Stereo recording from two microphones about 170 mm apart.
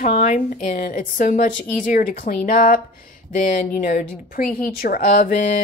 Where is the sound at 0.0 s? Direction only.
45° left (ahead or behind).